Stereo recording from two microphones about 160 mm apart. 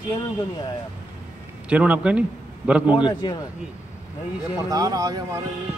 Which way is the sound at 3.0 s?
30° left (ahead or behind).